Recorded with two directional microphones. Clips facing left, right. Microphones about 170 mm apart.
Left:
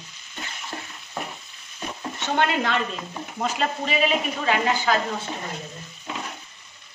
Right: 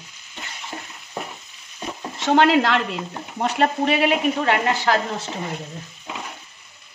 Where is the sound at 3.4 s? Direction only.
65° right (ahead or behind).